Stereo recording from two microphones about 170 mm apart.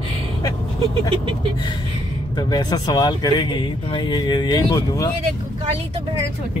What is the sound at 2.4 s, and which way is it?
Speech, 25° left (ahead or behind).